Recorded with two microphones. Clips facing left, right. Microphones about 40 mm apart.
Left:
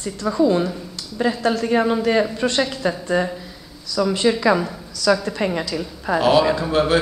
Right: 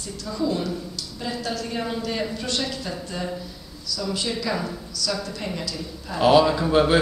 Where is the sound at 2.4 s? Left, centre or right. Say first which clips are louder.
Left 8 dB; left.